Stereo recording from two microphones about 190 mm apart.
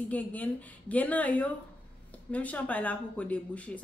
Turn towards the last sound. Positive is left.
turn(degrees=5)  # may be behind; listen again after turning